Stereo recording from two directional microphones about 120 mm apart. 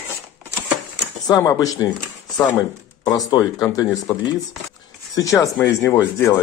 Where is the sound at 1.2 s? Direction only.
25° left (ahead or behind).